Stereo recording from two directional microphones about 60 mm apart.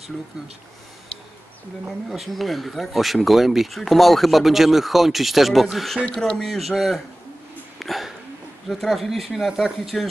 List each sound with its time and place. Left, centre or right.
2.0 s speech: centre
6.1 s speech: centre
6.4 s speech: centre
7.8 s a sound: centre
8.6 s speech: centre